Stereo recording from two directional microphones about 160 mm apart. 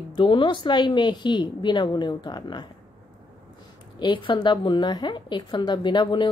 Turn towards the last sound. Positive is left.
turn(degrees=30)  # may be behind; listen again after turning